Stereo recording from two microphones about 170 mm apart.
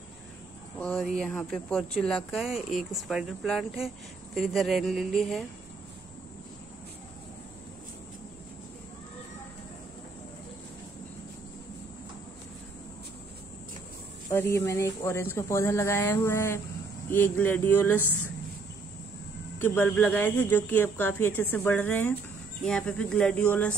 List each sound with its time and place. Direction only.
0.7 s speech: 5° left (ahead or behind)
14.3 s speech: 15° left (ahead or behind)
19.6 s speech: 10° left (ahead or behind)